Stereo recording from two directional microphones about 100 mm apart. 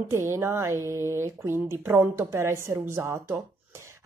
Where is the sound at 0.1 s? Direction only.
25° right (ahead or behind).